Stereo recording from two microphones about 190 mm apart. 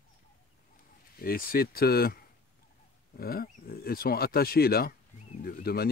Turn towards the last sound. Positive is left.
turn(degrees=55)  # may be behind; listen again after turning